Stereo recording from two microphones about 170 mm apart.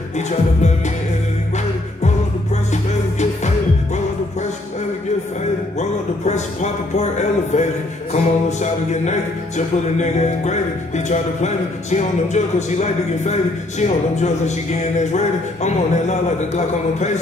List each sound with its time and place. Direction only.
0.6 s music: 40° left (ahead or behind)
2.0 s music: 45° left (ahead or behind)
5.8 s music: 40° left (ahead or behind)